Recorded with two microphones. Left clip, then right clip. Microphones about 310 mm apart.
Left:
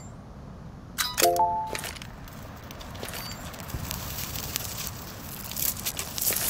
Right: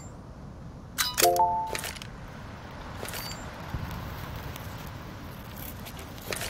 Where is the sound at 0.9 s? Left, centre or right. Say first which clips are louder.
Even; centre.